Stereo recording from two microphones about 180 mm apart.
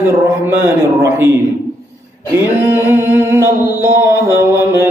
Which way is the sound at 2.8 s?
10° right (ahead or behind).